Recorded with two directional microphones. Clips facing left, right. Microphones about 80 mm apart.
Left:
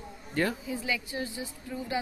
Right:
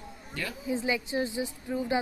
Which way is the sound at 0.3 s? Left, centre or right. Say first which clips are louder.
Left 8 dB; left.